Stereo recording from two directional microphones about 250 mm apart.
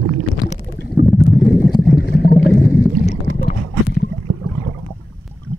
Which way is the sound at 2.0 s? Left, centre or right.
Left.